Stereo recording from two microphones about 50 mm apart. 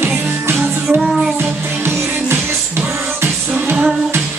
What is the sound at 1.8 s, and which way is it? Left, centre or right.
Music, right.